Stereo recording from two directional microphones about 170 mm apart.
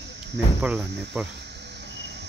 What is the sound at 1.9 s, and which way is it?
Vehicle, 90° right.